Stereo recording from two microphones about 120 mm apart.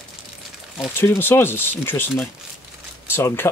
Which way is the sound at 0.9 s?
20° left (ahead or behind).